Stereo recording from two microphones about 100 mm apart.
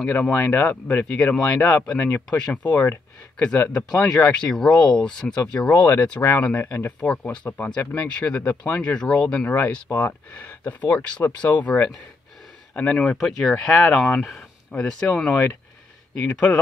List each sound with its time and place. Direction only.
0.0 s speech: 10° left (ahead or behind)